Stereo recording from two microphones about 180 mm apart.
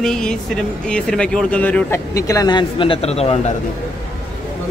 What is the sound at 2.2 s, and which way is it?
A man's voice, 20° left (ahead or behind).